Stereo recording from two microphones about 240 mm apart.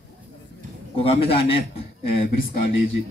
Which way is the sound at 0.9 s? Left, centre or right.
Left.